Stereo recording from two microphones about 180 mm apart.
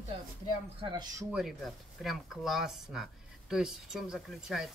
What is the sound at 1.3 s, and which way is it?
Speech, centre (ahead or behind).